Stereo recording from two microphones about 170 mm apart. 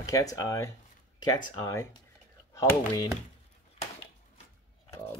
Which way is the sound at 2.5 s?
10° left (ahead or behind).